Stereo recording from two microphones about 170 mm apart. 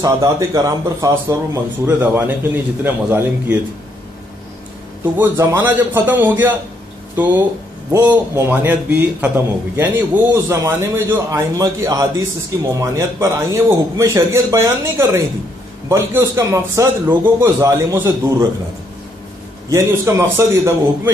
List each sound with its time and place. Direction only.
0.0 s a man's voice: 20° right (ahead or behind)
5.1 s a man's voice: 15° right (ahead or behind)
7.9 s a man's voice: 10° right (ahead or behind)
19.7 s a man's voice: 15° right (ahead or behind)